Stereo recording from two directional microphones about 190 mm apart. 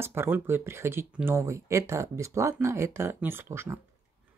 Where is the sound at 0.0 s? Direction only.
10° right (ahead or behind).